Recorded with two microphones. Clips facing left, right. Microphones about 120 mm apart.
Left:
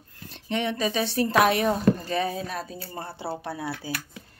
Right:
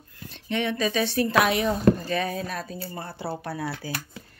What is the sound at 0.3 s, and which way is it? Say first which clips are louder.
Speech: even; 30° left (ahead or behind).